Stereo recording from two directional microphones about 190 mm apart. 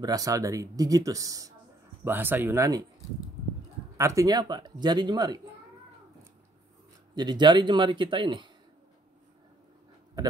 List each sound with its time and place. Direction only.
0.0 s speech: 20° right (ahead or behind)
4.0 s speech: 15° right (ahead or behind)
7.2 s speech: 25° right (ahead or behind)